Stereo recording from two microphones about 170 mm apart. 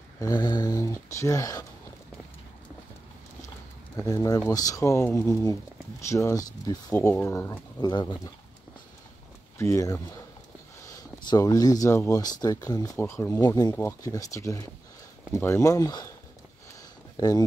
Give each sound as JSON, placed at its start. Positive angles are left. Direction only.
{"t": 0.2, "sound": "speech", "side_deg": 25}
{"t": 3.9, "sound": "speech", "side_deg": 20}
{"t": 9.6, "sound": "speech", "side_deg": 20}
{"t": 11.1, "sound": "speech", "side_deg": 25}
{"t": 17.2, "sound": "speech", "side_deg": 20}